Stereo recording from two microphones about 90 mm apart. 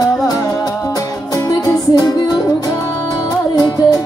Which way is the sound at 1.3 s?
45° left (ahead or behind).